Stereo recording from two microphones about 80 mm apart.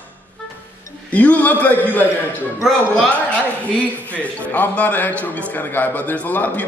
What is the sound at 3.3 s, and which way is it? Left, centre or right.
A man's voice, centre.